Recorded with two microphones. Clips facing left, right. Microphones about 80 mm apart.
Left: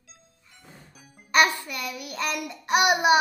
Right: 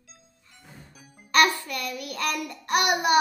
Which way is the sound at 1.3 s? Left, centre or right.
Centre.